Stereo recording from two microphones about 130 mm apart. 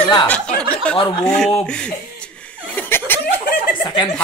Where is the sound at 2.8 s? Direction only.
10° left (ahead or behind).